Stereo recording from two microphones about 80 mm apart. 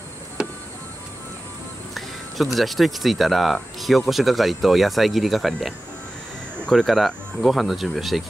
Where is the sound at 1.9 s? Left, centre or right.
Centre.